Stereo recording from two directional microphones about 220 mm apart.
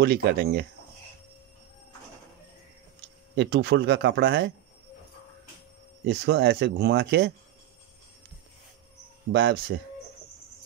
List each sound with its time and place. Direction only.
0.0 s speech: 45° right (ahead or behind)
3.3 s speech: 50° right (ahead or behind)
6.0 s speech: 50° right (ahead or behind)
9.3 s speech: 45° right (ahead or behind)